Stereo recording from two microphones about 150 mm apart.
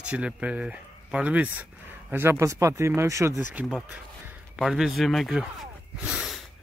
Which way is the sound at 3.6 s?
10° right (ahead or behind).